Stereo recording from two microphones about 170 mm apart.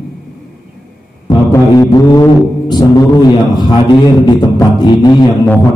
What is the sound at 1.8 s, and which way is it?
Speech, 20° left (ahead or behind).